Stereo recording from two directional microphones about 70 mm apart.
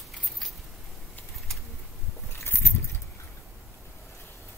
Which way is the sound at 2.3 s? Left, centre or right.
Left.